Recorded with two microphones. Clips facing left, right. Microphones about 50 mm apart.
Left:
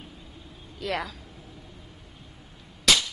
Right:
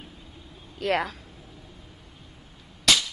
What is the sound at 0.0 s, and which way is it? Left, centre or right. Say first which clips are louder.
Vehicle: even; centre.